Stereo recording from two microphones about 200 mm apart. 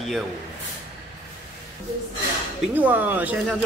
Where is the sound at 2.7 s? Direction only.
10° right (ahead or behind).